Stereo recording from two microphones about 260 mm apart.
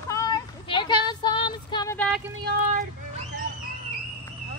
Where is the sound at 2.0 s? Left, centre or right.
Centre.